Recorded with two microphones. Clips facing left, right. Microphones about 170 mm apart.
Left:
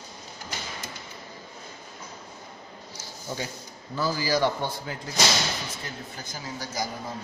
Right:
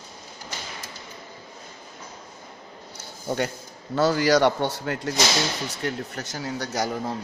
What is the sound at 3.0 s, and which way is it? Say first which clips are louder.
A man's voice: right 8 dB; 60° right (ahead or behind).